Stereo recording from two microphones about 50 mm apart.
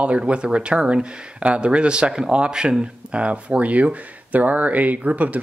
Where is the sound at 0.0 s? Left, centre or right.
Right.